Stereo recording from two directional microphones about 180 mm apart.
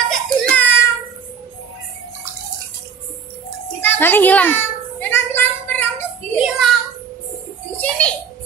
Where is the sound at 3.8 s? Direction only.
10° left (ahead or behind).